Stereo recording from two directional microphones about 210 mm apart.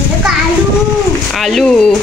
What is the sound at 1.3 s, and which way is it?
Speech, centre (ahead or behind).